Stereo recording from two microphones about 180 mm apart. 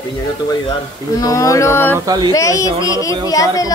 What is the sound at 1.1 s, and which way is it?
Speech, 20° left (ahead or behind).